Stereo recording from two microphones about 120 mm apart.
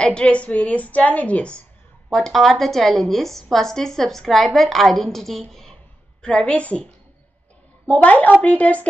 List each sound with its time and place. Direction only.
0.0 s a woman's voice: 10° left (ahead or behind)